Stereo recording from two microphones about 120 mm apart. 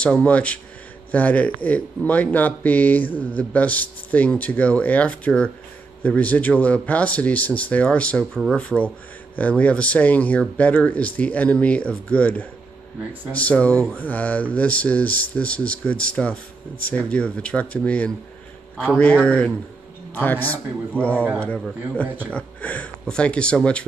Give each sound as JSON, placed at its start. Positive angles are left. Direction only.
{"t": 0.0, "sound": "speech", "side_deg": 10}
{"t": 22.0, "sound": "a man's voice", "side_deg": -15}
{"t": 22.3, "sound": "speech", "side_deg": 10}